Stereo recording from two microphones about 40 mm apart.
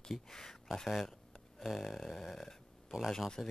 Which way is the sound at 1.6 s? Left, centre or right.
Centre.